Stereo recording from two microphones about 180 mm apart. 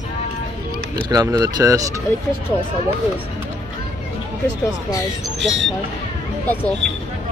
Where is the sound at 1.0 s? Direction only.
20° right (ahead or behind).